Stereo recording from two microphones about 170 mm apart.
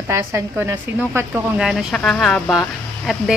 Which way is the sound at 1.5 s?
Centre (ahead or behind).